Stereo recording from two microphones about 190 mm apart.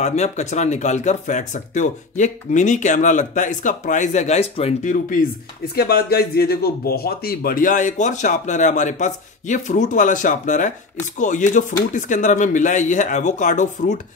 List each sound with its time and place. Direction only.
0.0 s speech: 35° left (ahead or behind)
5.8 s speech: 55° left (ahead or behind)